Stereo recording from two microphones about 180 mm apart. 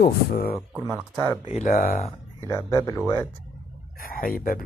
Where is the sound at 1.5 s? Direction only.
45° left (ahead or behind).